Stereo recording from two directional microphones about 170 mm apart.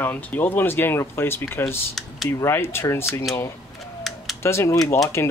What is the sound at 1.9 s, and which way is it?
Speech, centre (ahead or behind).